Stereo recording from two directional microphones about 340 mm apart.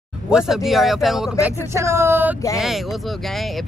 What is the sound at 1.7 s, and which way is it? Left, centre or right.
Speech, centre.